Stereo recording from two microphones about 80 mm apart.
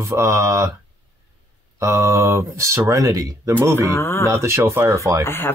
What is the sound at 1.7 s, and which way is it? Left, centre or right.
Speech, right.